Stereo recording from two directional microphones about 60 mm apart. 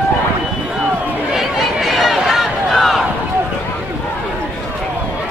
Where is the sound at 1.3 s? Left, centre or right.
Centre.